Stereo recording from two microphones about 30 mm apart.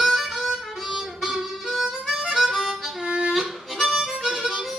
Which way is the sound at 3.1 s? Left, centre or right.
Right.